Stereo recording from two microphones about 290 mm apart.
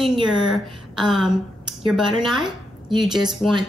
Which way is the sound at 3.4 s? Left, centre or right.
Centre.